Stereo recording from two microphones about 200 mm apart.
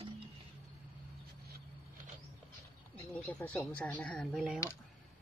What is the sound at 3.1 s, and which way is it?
Speech, 5° left (ahead or behind).